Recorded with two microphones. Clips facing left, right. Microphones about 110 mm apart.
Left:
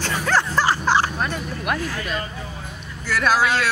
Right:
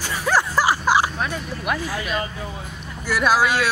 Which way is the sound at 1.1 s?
Centre (ahead or behind).